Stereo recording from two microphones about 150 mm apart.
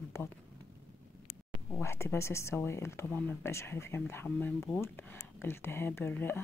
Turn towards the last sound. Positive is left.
turn(degrees=15)  # may be behind; listen again after turning